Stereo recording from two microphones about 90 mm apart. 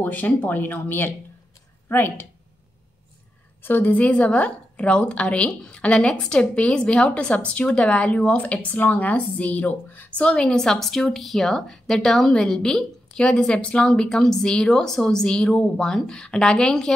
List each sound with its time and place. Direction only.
0.0 s speech: 20° left (ahead or behind)
3.6 s a woman's voice: 20° left (ahead or behind)